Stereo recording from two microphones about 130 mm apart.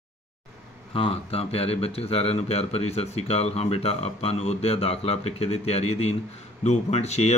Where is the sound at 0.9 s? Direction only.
45° left (ahead or behind).